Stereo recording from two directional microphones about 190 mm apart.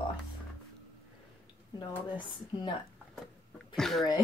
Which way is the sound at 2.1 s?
25° left (ahead or behind).